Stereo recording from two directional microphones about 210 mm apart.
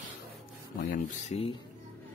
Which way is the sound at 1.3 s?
30° left (ahead or behind).